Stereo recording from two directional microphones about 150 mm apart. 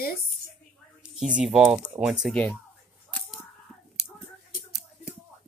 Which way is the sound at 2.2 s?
10° left (ahead or behind).